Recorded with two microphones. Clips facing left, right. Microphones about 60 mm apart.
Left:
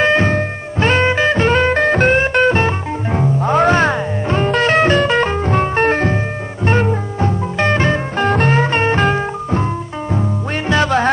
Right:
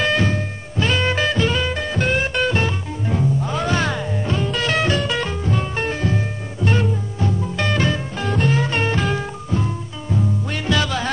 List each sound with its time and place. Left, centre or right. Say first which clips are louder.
0.0 s music: left 6 dB; left
1.0 s music: left 6 dB; left
1.4 s music: left 8 dB; left
2.1 s music: left 7 dB; left
10.7 s music: left 7 dB; left